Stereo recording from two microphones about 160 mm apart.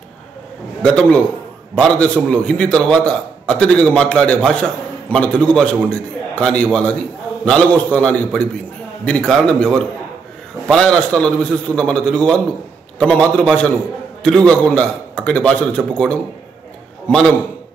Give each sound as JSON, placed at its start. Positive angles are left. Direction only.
{"t": 0.8, "sound": "a man's voice", "side_deg": 5}